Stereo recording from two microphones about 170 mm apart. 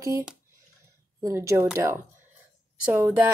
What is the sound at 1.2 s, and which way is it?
Speech, 15° right (ahead or behind).